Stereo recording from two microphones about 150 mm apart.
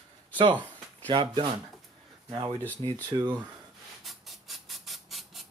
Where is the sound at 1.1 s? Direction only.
40° right (ahead or behind).